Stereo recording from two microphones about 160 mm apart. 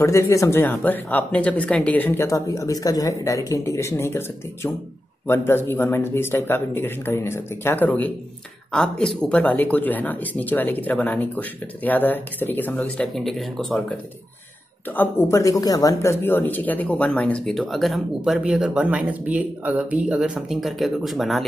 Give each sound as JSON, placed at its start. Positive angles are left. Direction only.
{"t": 0.0, "sound": "speech", "side_deg": 20}
{"t": 5.2, "sound": "speech", "side_deg": 15}
{"t": 15.0, "sound": "speech", "side_deg": 15}